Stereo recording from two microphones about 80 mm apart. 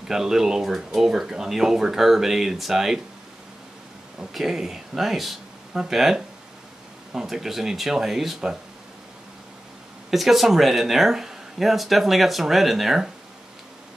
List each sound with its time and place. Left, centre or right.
0.1 s speech: centre
4.2 s speech: centre
10.1 s speech: centre